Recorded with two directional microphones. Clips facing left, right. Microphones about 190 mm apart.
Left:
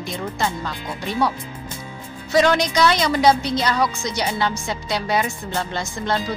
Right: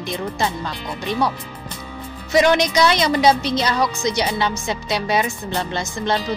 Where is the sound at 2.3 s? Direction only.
20° right (ahead or behind).